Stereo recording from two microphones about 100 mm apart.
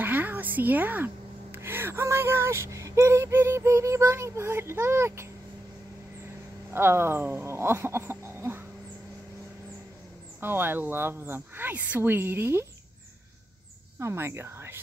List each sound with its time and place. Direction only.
0.0 s a woman's voice: 20° right (ahead or behind)
6.7 s speech: 25° right (ahead or behind)
10.4 s speech: 20° right (ahead or behind)
13.9 s speech: 25° right (ahead or behind)